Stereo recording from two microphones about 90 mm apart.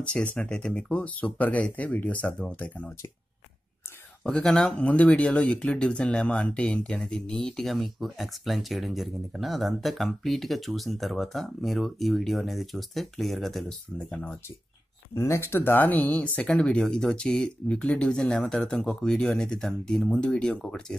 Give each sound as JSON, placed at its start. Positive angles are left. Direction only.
{"t": 0.1, "sound": "speech", "side_deg": 15}
{"t": 4.2, "sound": "speech", "side_deg": 5}
{"t": 13.9, "sound": "speech", "side_deg": 15}
{"t": 15.1, "sound": "speech", "side_deg": 30}